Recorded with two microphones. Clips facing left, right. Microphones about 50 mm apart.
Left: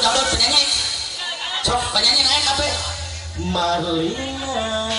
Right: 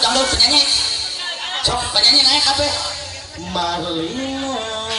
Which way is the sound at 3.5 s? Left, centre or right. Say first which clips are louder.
Left 1 dB; left.